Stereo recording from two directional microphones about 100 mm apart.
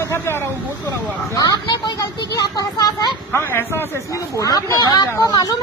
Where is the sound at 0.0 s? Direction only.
25° left (ahead or behind).